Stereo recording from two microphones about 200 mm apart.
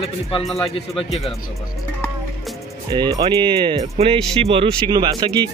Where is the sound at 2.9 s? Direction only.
20° right (ahead or behind).